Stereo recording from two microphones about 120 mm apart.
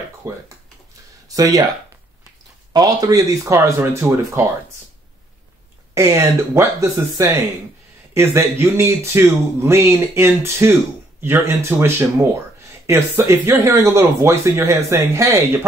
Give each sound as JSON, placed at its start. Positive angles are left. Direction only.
{"t": 0.2, "sound": "speech", "side_deg": -20}
{"t": 2.7, "sound": "speech", "side_deg": -30}
{"t": 5.9, "sound": "speech", "side_deg": -25}